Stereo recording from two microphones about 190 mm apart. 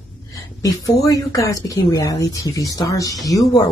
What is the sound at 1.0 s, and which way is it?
Speech, 15° left (ahead or behind).